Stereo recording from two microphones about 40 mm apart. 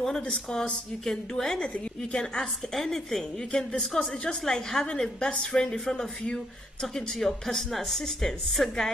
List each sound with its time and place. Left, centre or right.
0.0 s speech: centre